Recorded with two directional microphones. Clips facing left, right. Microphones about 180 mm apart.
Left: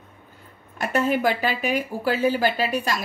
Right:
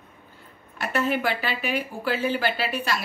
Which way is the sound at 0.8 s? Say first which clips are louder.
Left 3 dB; 45° left (ahead or behind).